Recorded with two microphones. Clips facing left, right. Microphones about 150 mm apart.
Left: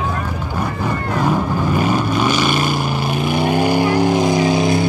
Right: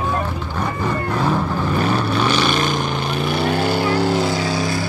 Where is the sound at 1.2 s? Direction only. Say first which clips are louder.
Left 4 dB; 10° left (ahead or behind).